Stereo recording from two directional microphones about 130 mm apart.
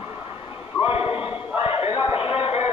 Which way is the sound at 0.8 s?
45° left (ahead or behind).